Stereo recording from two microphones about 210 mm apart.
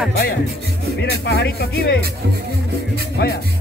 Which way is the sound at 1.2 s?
55° left (ahead or behind).